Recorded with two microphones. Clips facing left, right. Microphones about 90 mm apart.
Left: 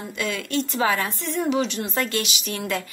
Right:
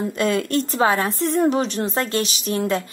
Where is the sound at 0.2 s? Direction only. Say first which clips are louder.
Right 5 dB; 40° right (ahead or behind).